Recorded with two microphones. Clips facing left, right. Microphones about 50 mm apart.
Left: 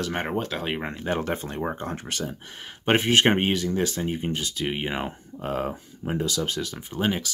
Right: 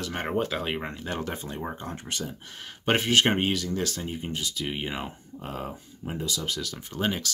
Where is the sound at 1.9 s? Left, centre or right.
Left.